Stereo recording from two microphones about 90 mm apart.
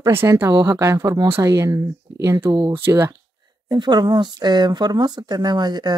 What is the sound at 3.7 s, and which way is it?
Speech, 55° right (ahead or behind).